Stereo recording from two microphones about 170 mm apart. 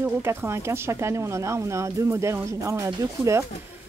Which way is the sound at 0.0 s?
15° right (ahead or behind).